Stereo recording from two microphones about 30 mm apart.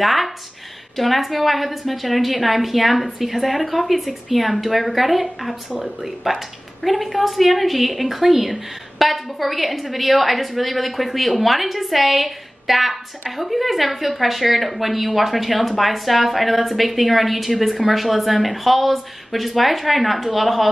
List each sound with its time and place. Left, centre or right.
0.0 s a woman's voice: centre